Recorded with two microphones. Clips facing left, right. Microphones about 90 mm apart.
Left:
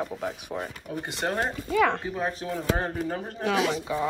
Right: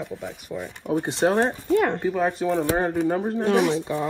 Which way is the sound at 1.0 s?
25° right (ahead or behind).